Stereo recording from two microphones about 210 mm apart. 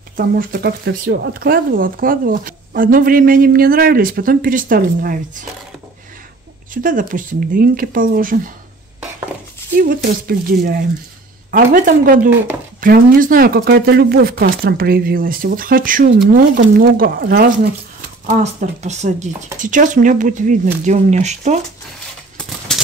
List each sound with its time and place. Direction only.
0.4 s speech: 45° right (ahead or behind)
6.7 s speech: 40° right (ahead or behind)
9.8 s speech: 45° right (ahead or behind)
18.2 s speech: 35° right (ahead or behind)
22.7 s a sound: 5° left (ahead or behind)